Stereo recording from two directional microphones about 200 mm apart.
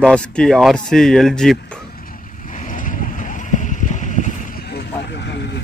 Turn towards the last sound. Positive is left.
turn(degrees=60)  # may be behind; listen again after turning